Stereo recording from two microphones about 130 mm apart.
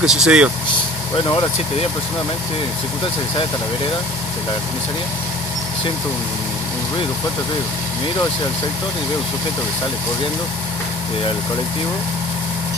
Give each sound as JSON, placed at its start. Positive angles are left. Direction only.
{"t": 0.0, "sound": "speech", "side_deg": -5}
{"t": 1.1, "sound": "speech", "side_deg": 40}